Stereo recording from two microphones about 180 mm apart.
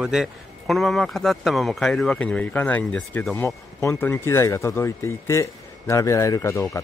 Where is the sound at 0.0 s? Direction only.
Centre (ahead or behind).